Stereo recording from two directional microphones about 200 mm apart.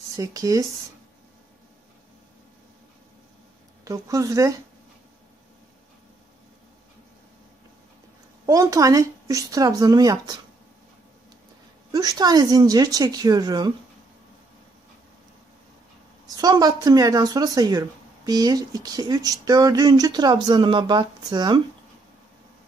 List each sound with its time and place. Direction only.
0.2 s speech: 15° right (ahead or behind)
3.8 s speech: 15° right (ahead or behind)
8.5 s speech: 15° right (ahead or behind)
11.9 s speech: 20° right (ahead or behind)
16.3 s speech: 20° right (ahead or behind)